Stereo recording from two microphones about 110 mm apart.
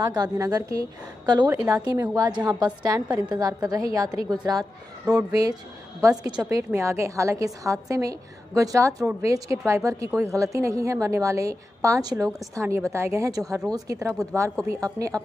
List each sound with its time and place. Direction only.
0.0 s a woman's voice: 35° right (ahead or behind)